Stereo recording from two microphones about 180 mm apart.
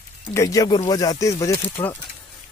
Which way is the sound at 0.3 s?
15° left (ahead or behind).